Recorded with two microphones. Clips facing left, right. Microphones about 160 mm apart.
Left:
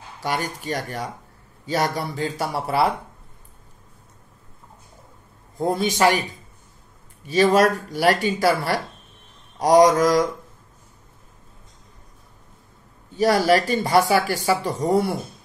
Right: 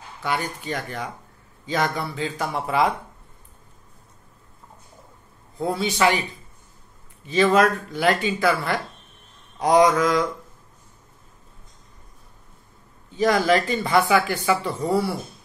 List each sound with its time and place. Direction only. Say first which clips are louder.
0.2 s speech: left 1 dB; 40° left (ahead or behind)
5.6 s speech: left 2 dB; 45° left (ahead or behind)
7.3 s speech: left 1 dB; 40° left (ahead or behind)
13.5 s speech: left 2 dB; 40° left (ahead or behind)